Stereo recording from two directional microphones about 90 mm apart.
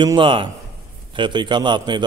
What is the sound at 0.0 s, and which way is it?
A man's voice, 65° right (ahead or behind).